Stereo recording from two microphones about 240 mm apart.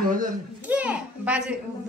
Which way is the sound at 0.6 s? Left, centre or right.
Centre.